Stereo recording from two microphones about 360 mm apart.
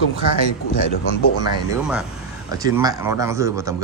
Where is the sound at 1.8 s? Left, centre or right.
Centre.